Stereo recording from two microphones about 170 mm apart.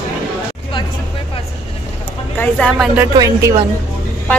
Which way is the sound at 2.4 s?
5° left (ahead or behind).